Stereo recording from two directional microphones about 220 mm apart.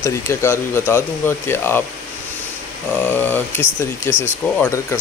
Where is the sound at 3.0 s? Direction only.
10° left (ahead or behind).